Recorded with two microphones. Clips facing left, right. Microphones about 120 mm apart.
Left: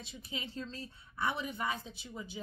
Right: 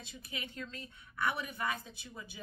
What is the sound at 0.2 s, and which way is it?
A woman's voice, 25° left (ahead or behind).